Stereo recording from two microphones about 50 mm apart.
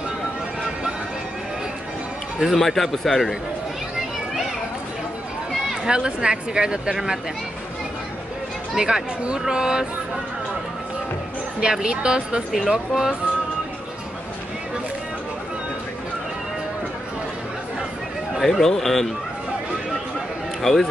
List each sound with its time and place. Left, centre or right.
2.4 s speech: centre
5.9 s a woman's voice: centre
8.7 s a woman's voice: centre
11.8 s a woman's voice: centre
18.4 s speech: centre
20.6 s speech: centre